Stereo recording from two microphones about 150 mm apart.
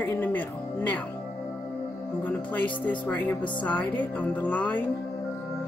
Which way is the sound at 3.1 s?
10° left (ahead or behind).